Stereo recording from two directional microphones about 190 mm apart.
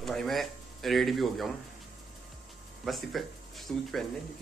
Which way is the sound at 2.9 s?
Centre (ahead or behind).